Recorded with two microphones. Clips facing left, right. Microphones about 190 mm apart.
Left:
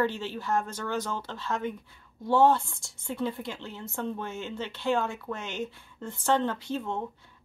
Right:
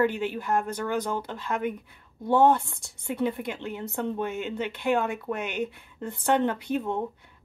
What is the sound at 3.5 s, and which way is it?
Speech, 15° right (ahead or behind).